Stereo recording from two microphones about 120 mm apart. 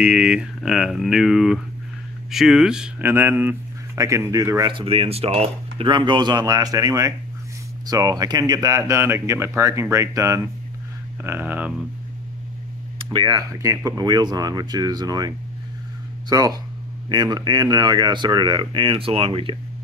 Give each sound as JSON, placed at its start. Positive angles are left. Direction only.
{"t": 0.0, "sound": "speech", "side_deg": -10}
{"t": 3.0, "sound": "speech", "side_deg": -20}
{"t": 4.7, "sound": "speech", "side_deg": -55}
{"t": 13.0, "sound": "speech", "side_deg": -40}